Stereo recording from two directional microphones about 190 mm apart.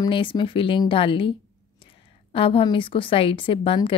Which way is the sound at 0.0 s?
25° left (ahead or behind).